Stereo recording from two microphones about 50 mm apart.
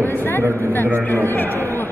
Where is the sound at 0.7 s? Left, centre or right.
Left.